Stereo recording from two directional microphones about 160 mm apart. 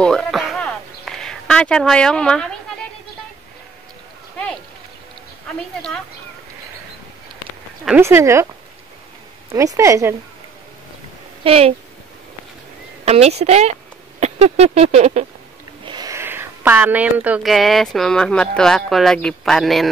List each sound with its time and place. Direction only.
0.0 s a sound: 5° left (ahead or behind)
8.0 s speech: 15° right (ahead or behind)
9.5 s speech: 20° right (ahead or behind)
11.4 s speech: 35° right (ahead or behind)
13.0 s speech: 40° right (ahead or behind)
15.8 s speech: 25° right (ahead or behind); by 19.9 s centre (ahead or behind)